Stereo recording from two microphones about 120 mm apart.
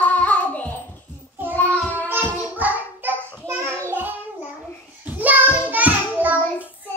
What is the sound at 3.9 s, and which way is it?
Child singing, 15° right (ahead or behind).